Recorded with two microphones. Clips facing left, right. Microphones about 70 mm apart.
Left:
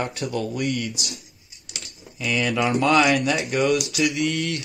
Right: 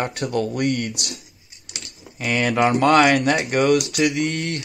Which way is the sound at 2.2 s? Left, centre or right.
Right.